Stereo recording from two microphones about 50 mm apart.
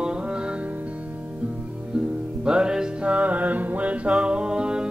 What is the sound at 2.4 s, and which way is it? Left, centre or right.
Music, centre.